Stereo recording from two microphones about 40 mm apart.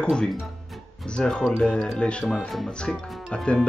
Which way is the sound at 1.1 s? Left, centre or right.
Left.